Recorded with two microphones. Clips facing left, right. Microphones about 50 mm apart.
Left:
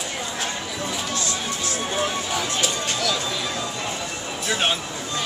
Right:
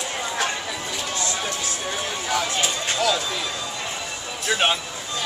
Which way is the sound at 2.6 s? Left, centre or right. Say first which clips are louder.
Right 2 dB; right.